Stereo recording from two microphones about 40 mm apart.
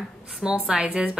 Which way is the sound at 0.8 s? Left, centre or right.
Right.